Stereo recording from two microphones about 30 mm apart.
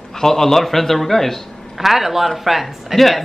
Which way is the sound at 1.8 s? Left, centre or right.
Centre.